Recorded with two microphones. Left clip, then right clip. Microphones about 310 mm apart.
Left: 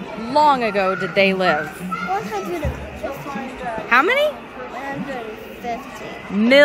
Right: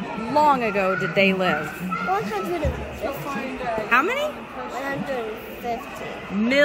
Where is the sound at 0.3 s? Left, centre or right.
Centre.